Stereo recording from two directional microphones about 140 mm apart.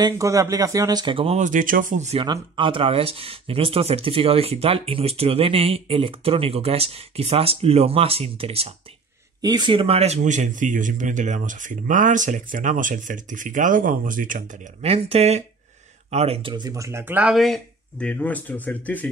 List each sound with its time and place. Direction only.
0.0 s speech: 25° right (ahead or behind); by 1.4 s 40° right (ahead or behind)
1.4 s speech: 70° right (ahead or behind)
2.0 s speech: 40° right (ahead or behind)
9.4 s speech: 30° right (ahead or behind); by 14.7 s 70° right (ahead or behind)
14.8 s speech: 45° right (ahead or behind); by 17.4 s 10° right (ahead or behind)
17.4 s speech: 5° left (ahead or behind)